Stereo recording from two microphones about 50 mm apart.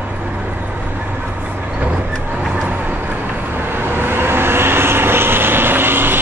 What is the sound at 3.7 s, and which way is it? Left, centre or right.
Vehicle, right.